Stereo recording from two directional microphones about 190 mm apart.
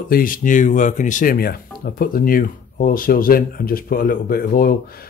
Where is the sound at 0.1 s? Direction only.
45° left (ahead or behind).